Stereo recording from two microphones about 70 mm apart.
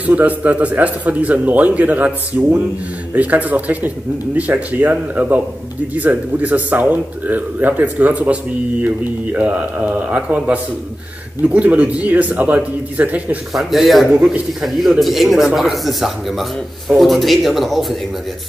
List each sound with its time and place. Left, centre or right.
0.0 s a man's voice: right
13.5 s speech: centre